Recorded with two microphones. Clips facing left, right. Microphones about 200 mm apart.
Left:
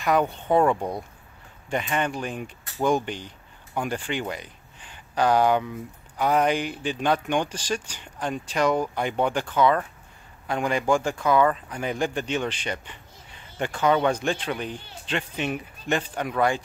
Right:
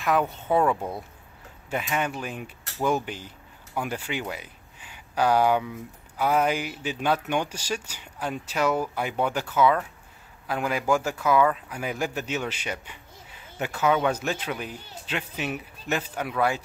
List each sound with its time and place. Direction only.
0.0 s speech: centre (ahead or behind)
0.7 s speech: 15° left (ahead or behind)
1.7 s speech: 5° right (ahead or behind)